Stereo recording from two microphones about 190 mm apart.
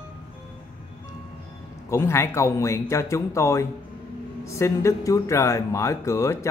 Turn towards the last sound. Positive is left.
turn(degrees=15)  # may be behind; listen again after turning